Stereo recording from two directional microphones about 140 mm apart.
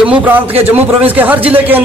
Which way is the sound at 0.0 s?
10° right (ahead or behind).